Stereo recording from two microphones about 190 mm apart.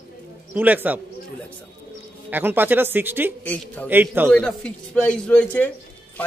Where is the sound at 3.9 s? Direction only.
10° right (ahead or behind).